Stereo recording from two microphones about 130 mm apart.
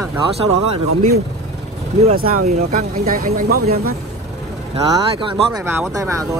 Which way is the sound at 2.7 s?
90° right.